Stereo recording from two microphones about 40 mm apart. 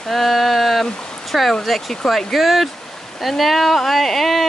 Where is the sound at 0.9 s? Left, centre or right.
Centre.